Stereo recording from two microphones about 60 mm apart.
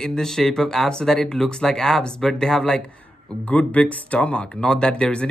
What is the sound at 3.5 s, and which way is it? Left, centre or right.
Speech, left.